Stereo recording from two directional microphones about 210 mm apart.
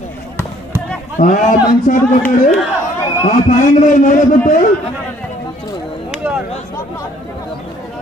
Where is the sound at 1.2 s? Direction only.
35° left (ahead or behind).